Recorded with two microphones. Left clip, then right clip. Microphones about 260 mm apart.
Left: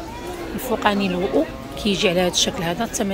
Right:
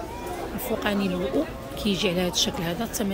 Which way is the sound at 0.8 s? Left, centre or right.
Centre.